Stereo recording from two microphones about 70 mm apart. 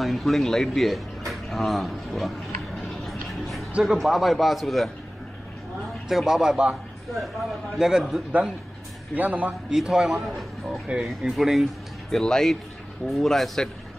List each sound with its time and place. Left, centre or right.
0.0 s speech: centre
3.1 s tick-tock: centre
3.8 s speech: centre
6.0 s a man's voice: centre
7.7 s speech: centre
9.1 s a man's voice: right
9.7 s a man's voice: centre